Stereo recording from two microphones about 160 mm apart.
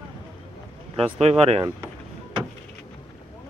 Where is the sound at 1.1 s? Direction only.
40° right (ahead or behind).